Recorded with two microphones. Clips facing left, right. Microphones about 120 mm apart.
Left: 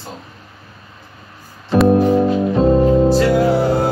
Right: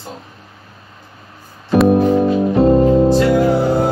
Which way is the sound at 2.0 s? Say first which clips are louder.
Right 1 dB; 10° right (ahead or behind).